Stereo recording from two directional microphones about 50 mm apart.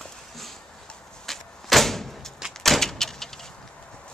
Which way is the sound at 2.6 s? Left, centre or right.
Centre.